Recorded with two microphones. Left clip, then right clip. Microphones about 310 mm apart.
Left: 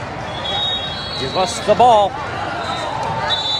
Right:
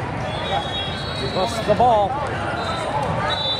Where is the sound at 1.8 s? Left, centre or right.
Left.